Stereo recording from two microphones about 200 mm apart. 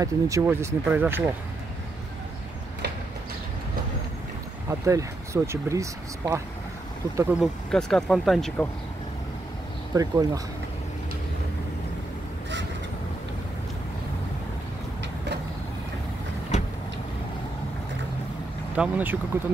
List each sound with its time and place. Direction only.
0.0 s speech: 15° right (ahead or behind)
4.6 s speech: 15° right (ahead or behind)
7.7 s speech: centre (ahead or behind)
9.9 s speech: 15° right (ahead or behind)
18.8 s speech: 10° right (ahead or behind)